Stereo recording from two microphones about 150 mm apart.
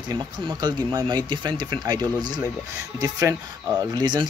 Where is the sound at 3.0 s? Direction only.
20° right (ahead or behind).